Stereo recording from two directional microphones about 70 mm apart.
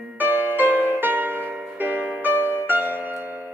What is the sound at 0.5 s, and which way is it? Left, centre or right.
Music, right.